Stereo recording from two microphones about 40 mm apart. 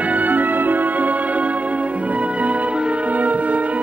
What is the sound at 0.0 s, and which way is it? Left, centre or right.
Music, right.